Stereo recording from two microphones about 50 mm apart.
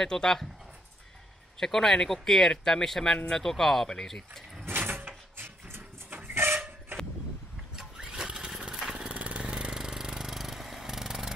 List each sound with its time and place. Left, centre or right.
0.0 s speech: centre
1.6 s speech: centre
4.6 s sliding door: right
6.3 s a sound: right
7.7 s lawn mower: centre
9.0 s a sound: right; by 11.3 s centre